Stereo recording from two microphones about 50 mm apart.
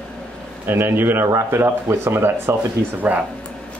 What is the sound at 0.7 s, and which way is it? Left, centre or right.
Speech, right.